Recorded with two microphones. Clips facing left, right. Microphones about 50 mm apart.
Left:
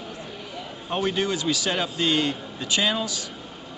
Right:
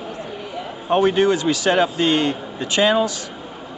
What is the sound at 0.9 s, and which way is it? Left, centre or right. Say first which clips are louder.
Speech: right 9 dB; right.